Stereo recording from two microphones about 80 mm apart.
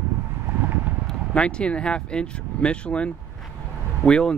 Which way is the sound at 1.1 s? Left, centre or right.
Centre.